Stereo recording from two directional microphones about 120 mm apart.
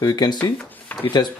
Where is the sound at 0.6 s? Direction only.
10° left (ahead or behind).